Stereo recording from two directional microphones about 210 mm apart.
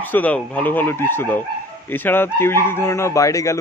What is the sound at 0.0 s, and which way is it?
Speech, 10° left (ahead or behind).